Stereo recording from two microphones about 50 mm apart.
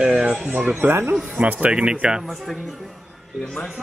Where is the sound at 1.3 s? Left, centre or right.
Right.